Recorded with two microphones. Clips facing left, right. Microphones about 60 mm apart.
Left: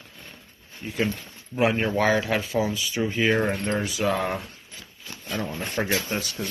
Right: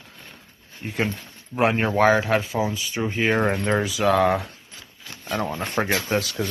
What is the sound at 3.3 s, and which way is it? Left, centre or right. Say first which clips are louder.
Speech: right 3 dB; right.